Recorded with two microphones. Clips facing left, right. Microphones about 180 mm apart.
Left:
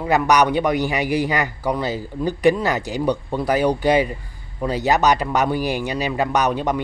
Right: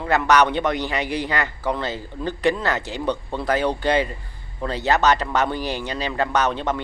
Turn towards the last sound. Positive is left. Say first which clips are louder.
# left 2 dB
turn(degrees=15)  # may be behind; listen again after turning